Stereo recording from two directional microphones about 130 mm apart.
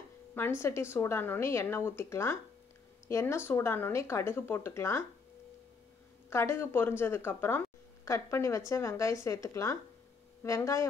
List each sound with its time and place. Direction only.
0.3 s a woman's voice: 20° left (ahead or behind)
6.3 s a woman's voice: 20° left (ahead or behind)